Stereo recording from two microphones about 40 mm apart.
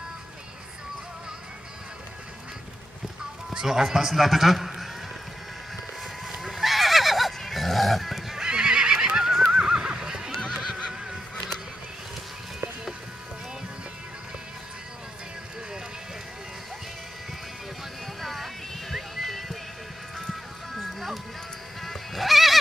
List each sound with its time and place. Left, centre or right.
3.5 s a man's voice: centre
6.2 s neigh: centre
8.5 s neigh: centre
18.0 s music: centre
20.8 s clip-clop: centre
21.8 s music: centre